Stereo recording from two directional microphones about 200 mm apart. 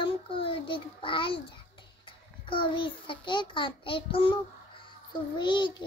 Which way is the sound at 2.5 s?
25° left (ahead or behind).